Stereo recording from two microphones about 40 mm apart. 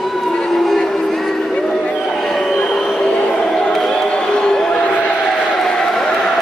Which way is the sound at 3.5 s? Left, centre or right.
Centre.